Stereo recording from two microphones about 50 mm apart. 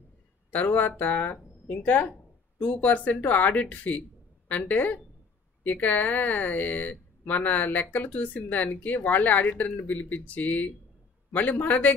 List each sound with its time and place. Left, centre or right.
0.5 s a woman's voice: left